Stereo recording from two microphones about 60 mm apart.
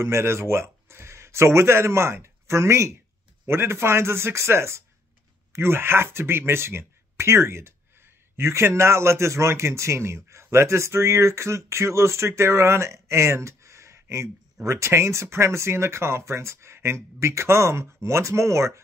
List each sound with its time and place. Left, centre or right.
0.0 s a man's voice: right